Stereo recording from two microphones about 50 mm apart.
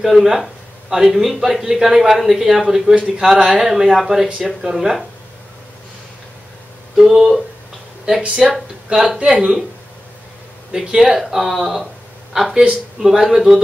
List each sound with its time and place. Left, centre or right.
0.0 s speech: centre
2.9 s speech: centre
7.0 s speech: centre
10.7 s speech: centre